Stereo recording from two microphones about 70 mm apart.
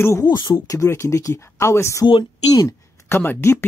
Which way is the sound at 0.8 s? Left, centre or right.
Left.